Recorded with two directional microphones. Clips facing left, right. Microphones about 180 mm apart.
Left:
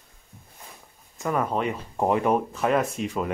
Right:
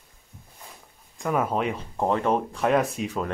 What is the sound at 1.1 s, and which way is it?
Speech, centre (ahead or behind).